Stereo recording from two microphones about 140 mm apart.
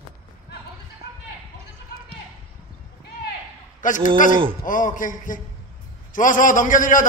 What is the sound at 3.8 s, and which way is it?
A man's voice, 70° left (ahead or behind).